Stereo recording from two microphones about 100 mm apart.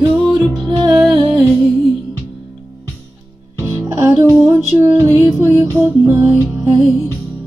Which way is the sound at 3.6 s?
25° right (ahead or behind).